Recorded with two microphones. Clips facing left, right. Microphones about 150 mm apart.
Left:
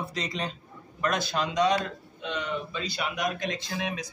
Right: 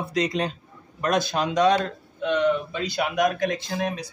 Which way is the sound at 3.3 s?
45° right (ahead or behind).